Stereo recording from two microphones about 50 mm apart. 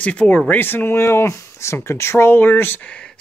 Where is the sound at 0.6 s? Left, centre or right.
Left.